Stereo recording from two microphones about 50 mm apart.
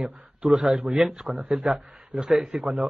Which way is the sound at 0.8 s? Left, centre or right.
Centre.